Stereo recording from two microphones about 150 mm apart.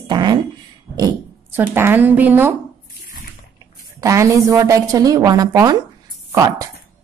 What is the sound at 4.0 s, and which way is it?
Speech, 20° right (ahead or behind).